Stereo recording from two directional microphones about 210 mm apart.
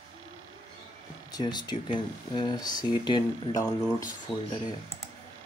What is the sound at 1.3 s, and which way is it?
Speech, 20° left (ahead or behind).